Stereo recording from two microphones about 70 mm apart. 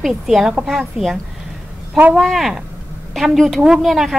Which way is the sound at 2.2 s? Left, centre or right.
Centre.